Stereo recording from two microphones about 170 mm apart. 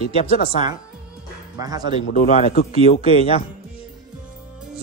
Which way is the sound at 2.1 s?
40° left (ahead or behind).